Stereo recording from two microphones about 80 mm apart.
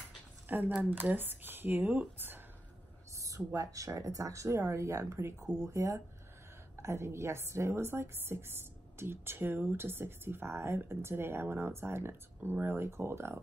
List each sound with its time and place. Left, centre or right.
0.5 s speech: right
3.2 s a woman's voice: right